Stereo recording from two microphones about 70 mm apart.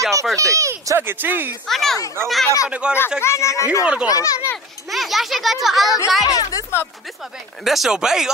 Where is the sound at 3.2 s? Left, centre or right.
Left.